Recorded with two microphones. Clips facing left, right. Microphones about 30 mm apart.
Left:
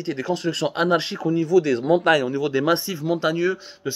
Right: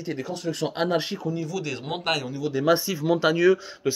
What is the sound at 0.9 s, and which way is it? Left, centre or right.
Speech, left.